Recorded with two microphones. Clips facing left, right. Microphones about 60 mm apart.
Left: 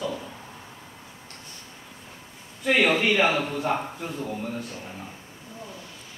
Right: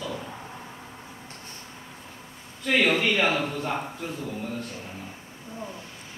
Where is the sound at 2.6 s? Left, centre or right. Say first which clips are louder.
Left 1 dB; centre.